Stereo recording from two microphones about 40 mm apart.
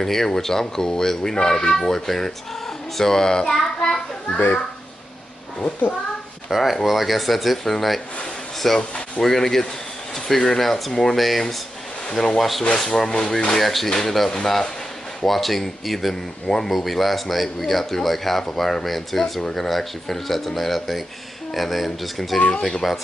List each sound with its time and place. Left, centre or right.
0.0 s speech: centre
6.5 s speech: centre
8.7 s speech: left
9.2 s speech: centre
11.1 s speech: centre
15.2 s speech: centre